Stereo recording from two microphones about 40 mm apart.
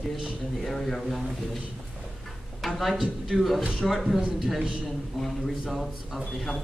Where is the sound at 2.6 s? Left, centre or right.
Centre.